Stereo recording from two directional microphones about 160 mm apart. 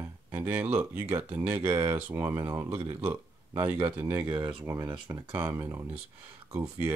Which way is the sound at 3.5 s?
35° right (ahead or behind).